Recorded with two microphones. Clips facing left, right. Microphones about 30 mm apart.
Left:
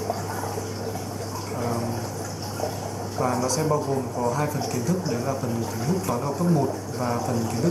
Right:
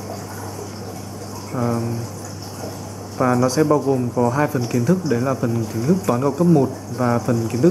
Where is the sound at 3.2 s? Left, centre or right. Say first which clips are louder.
Right 8 dB; right.